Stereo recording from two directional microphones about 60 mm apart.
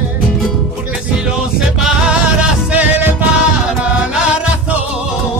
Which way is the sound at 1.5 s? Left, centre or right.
Centre.